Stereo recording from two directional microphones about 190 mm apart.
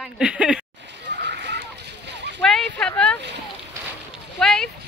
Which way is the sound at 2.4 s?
Centre (ahead or behind).